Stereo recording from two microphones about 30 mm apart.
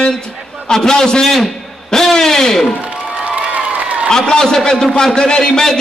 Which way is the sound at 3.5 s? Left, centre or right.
Right.